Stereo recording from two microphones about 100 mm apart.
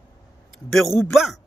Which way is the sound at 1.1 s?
Centre (ahead or behind).